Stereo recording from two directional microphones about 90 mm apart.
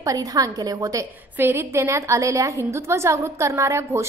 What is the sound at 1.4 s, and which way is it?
A woman's voice, 25° right (ahead or behind).